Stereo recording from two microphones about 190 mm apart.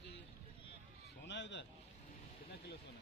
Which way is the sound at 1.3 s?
70° left (ahead or behind).